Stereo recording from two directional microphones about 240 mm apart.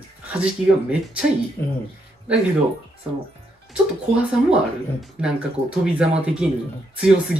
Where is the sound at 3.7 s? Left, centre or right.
Centre.